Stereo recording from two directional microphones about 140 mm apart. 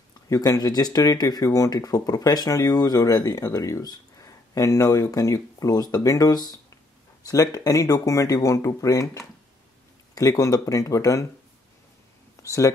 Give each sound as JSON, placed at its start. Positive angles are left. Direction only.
{"t": 0.3, "sound": "speech", "side_deg": 25}
{"t": 12.4, "sound": "speech", "side_deg": 25}